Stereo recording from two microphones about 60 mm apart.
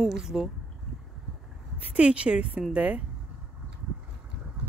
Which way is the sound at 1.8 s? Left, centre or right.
Centre.